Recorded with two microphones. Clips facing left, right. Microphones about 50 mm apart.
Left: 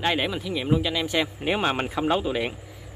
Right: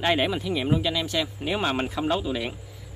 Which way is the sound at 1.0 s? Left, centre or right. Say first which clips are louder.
Left 2 dB; left.